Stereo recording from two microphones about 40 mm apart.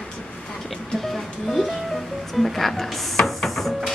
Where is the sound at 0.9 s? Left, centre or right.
Centre.